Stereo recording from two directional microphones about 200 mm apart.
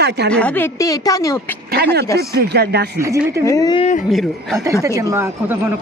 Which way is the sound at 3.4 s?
15° left (ahead or behind).